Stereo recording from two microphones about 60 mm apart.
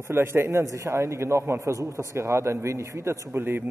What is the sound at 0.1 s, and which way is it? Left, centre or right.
Speech, right.